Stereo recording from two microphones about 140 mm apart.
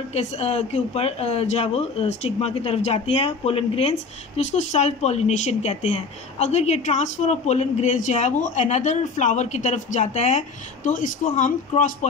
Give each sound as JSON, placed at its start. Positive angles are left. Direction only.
{"t": 0.1, "sound": "a woman's voice", "side_deg": 50}
{"t": 4.4, "sound": "speech", "side_deg": 55}